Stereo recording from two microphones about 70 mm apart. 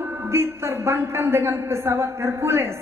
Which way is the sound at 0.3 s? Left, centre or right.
Right.